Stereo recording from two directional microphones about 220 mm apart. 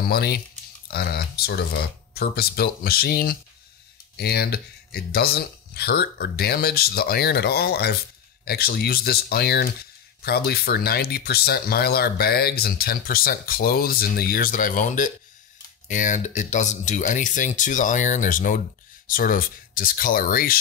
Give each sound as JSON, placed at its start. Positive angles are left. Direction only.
{"t": 0.0, "sound": "speech", "side_deg": 45}